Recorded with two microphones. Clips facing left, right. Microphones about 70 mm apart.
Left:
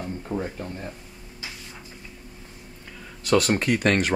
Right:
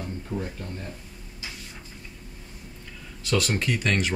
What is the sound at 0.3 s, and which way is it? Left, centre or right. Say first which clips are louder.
Speech: left 3 dB; left.